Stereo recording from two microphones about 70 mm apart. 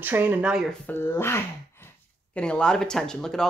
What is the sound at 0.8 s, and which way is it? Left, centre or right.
Speech, left.